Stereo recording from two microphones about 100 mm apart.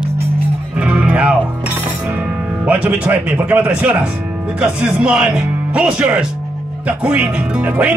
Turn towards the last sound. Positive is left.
turn(degrees=-15)  # may be behind; listen again after turning